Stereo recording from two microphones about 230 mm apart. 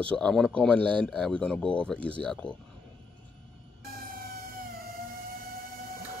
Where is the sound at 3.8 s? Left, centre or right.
Right.